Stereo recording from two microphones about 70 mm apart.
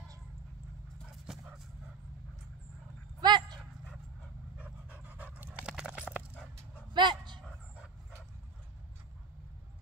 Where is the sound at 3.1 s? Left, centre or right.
Right.